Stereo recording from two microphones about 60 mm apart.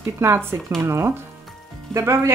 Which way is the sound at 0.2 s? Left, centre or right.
Right.